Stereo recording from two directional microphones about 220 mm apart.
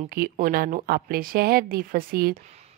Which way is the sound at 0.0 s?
40° right (ahead or behind).